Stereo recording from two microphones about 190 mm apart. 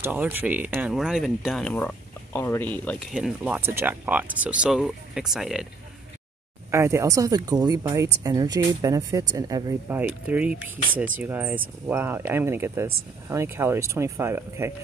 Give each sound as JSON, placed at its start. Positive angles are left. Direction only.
{"t": 0.0, "sound": "speech", "side_deg": -10}
{"t": 3.2, "sound": "speech", "side_deg": -5}
{"t": 6.7, "sound": "speech", "side_deg": -15}